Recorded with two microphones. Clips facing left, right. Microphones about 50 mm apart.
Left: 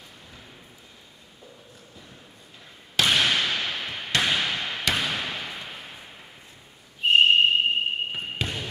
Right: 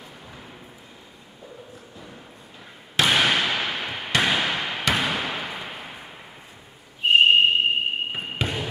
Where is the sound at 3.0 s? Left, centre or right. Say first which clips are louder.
Right 2 dB; centre.